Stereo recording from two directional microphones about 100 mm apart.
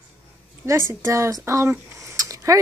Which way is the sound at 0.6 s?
25° right (ahead or behind).